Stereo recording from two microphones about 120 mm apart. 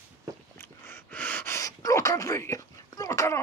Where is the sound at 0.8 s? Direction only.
15° left (ahead or behind).